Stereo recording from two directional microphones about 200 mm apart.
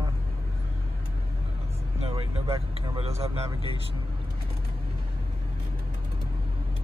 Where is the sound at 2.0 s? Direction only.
30° right (ahead or behind).